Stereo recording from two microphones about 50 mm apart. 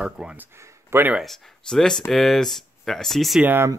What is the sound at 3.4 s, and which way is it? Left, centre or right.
Speech, right.